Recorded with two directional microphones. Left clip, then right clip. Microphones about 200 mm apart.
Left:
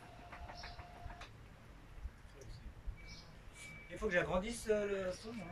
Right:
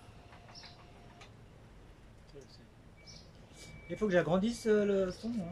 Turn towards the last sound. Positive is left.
turn(degrees=-45)  # may be behind; listen again after turning